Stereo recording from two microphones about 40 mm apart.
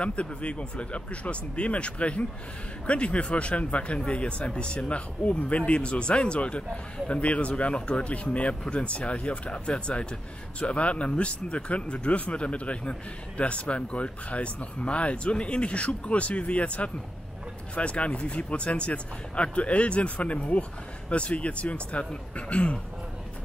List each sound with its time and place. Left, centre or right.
0.0 s speech: left